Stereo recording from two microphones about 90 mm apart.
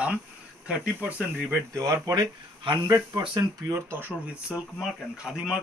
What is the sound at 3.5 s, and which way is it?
Speech, 30° right (ahead or behind).